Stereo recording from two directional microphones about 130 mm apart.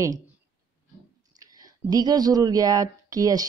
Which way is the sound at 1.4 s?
30° right (ahead or behind).